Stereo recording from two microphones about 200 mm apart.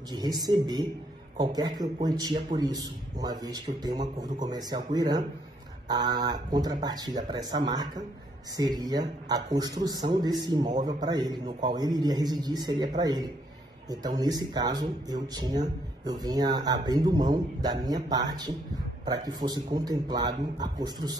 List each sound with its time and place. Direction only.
0.1 s a man's voice: 20° right (ahead or behind)